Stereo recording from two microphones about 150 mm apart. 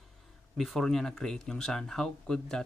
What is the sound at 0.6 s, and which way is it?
Speech, centre (ahead or behind).